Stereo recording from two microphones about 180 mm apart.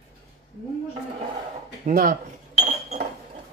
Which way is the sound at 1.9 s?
45° right (ahead or behind).